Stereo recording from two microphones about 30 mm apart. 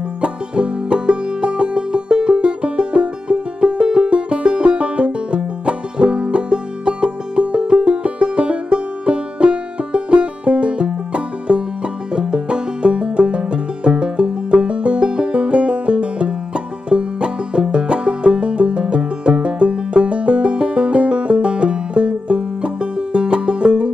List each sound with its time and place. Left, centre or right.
0.2 s music: right